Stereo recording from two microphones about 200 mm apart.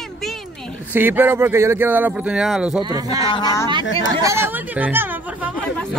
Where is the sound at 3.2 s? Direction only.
20° left (ahead or behind).